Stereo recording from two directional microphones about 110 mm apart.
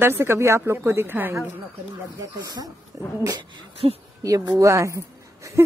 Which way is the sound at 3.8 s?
60° right (ahead or behind).